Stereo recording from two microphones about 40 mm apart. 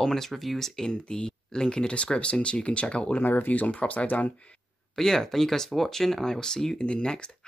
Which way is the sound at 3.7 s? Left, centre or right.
Left.